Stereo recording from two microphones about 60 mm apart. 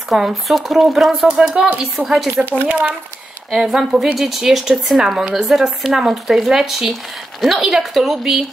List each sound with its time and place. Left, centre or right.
0.1 s speech: centre
2.7 s speech: right
3.5 s speech: centre